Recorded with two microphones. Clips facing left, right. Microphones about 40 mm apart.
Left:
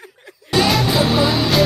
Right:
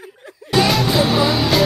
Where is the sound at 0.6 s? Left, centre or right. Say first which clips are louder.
Even; centre.